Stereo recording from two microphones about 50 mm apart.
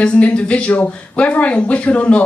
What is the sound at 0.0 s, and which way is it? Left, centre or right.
Speech, left.